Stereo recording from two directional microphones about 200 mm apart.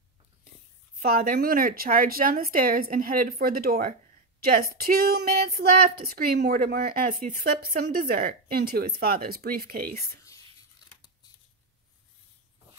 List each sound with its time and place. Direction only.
1.0 s speech: 45° right (ahead or behind)